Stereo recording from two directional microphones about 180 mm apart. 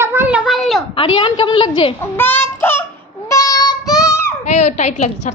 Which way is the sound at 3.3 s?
20° left (ahead or behind).